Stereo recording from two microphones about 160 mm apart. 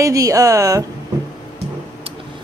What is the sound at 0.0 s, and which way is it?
Speech, 20° right (ahead or behind).